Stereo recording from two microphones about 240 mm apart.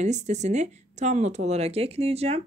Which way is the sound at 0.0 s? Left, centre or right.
Right.